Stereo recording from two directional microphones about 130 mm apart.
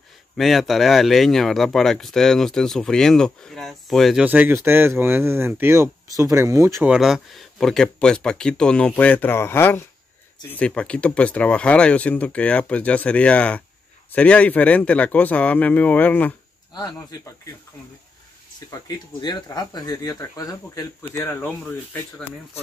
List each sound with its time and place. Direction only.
0.4 s speech: centre (ahead or behind)
4.2 s speech: 10° right (ahead or behind)
6.9 s speech: 5° right (ahead or behind); by 16.3 s 15° left (ahead or behind)
18.7 s speech: 30° left (ahead or behind); by 21.7 s 15° left (ahead or behind)